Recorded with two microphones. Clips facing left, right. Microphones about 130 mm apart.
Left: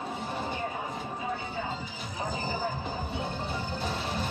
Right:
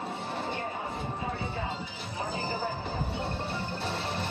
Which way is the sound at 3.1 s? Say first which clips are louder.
Even; centre (ahead or behind).